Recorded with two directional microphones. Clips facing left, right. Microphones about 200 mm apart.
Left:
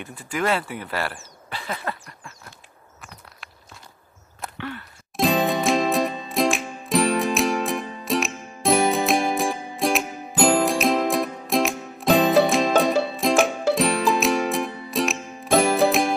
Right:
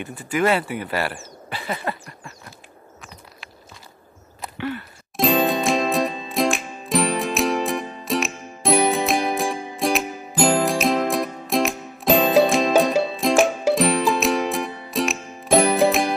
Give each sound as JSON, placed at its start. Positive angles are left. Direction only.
{"t": 0.0, "sound": "speech", "side_deg": 0}
{"t": 4.4, "sound": "music", "side_deg": -5}